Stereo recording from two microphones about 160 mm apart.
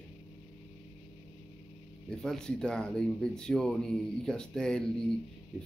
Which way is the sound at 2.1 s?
5° left (ahead or behind).